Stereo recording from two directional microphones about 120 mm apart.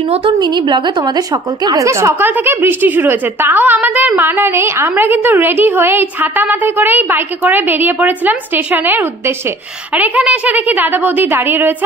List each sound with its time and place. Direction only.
0.1 s a woman's voice: 60° right (ahead or behind)
0.4 s a woman's voice: 40° right (ahead or behind); by 11.7 s 15° right (ahead or behind)